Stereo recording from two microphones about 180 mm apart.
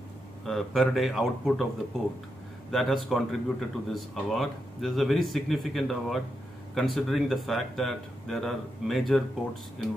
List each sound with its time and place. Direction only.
0.5 s speech: centre (ahead or behind)
2.7 s speech: centre (ahead or behind)